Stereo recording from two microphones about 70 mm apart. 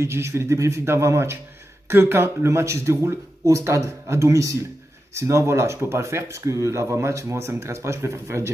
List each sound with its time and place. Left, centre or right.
0.0 s speech: right